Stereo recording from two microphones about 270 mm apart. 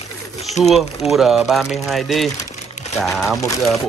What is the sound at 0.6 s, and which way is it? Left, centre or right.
Speech, left.